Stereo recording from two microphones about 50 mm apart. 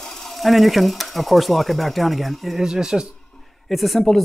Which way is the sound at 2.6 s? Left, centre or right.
Centre.